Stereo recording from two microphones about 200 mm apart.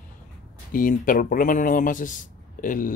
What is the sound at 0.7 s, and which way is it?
A man's voice, 45° left (ahead or behind).